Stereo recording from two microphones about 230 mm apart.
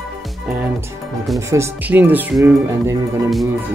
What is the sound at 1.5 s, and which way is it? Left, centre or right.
Speech, centre.